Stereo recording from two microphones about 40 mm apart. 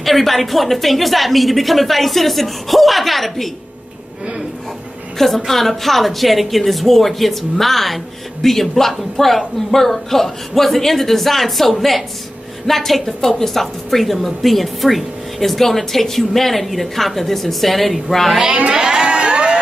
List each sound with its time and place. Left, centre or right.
0.0 s a woman's voice: centre
5.2 s a woman's voice: centre
18.7 s crowd: centre